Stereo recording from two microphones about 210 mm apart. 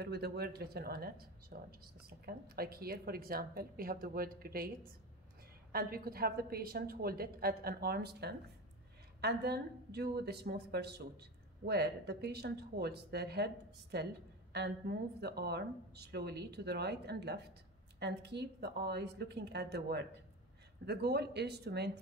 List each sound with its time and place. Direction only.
0.0 s a woman's voice: 50° right (ahead or behind)